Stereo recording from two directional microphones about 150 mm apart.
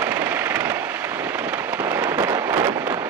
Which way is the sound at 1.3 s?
15° right (ahead or behind).